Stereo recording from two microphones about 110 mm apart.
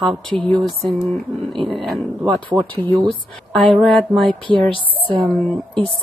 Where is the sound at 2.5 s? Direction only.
45° right (ahead or behind).